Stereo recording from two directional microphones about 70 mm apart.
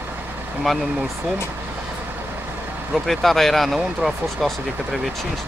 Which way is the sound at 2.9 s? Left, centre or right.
Centre.